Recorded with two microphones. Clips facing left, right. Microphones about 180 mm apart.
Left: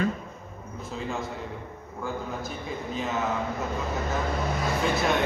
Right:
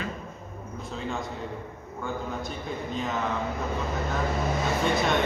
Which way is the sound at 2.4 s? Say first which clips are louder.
Even; centre (ahead or behind).